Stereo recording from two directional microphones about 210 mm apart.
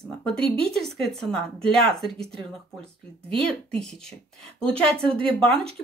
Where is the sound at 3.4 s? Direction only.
5° left (ahead or behind).